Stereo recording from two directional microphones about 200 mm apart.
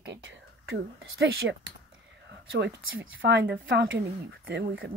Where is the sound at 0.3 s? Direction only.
65° right (ahead or behind).